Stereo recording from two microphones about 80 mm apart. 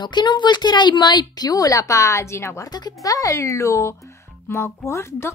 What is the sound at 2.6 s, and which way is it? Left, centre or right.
A child's voice, left.